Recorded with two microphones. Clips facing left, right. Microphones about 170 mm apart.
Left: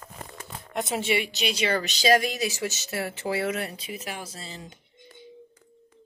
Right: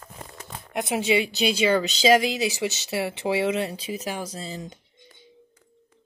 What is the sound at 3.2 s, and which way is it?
Speech, 90° right.